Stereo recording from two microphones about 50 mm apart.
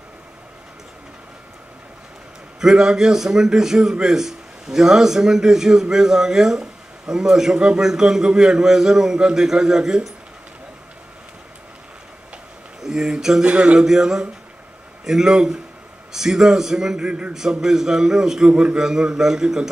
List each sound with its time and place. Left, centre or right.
2.6 s a man's voice: centre
12.8 s speech: centre
13.7 s a man's voice: centre